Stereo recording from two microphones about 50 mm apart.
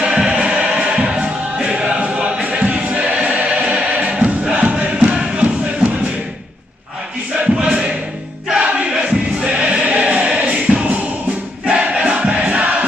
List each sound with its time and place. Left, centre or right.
0.0 s music: centre
4.6 s crowd: right
7.5 s a sound: centre
8.5 s crowd: right
9.6 s music: right
11.6 s crowd: centre